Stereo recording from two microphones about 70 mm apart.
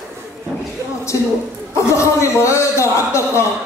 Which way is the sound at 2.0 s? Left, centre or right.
Left.